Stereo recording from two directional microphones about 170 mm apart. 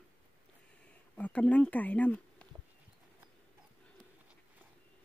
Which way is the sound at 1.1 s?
10° left (ahead or behind).